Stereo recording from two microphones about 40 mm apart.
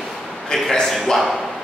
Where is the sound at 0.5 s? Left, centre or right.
Centre.